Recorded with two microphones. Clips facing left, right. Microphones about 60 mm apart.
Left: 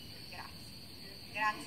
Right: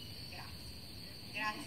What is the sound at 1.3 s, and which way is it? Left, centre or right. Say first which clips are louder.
Speech: left 6 dB; left.